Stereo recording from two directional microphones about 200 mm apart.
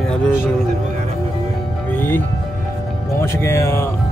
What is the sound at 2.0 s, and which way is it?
Music, 10° left (ahead or behind).